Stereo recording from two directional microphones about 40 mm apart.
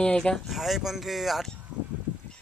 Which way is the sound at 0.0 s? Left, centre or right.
Left.